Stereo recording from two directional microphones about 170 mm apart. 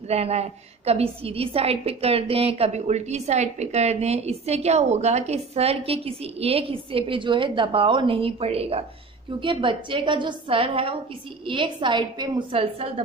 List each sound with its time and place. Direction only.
0.1 s a woman's voice: 40° right (ahead or behind)